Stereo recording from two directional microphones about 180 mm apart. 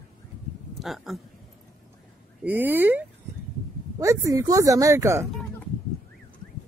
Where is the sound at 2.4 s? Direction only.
10° right (ahead or behind).